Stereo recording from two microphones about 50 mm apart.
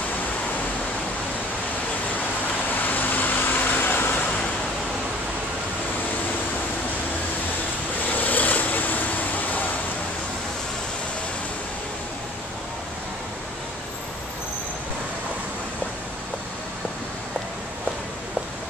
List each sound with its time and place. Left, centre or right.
2.7 s vehicle: left
8.1 s vehicle: left